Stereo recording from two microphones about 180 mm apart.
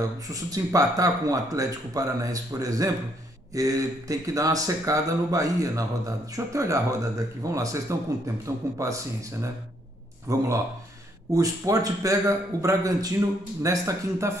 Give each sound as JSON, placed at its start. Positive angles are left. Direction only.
{"t": 0.3, "sound": "a man's voice", "side_deg": -20}